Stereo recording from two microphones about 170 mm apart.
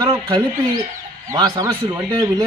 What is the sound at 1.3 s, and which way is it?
Speech, 20° right (ahead or behind).